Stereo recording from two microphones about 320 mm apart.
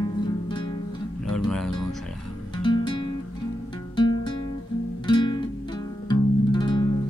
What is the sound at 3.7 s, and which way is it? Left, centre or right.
Music, centre.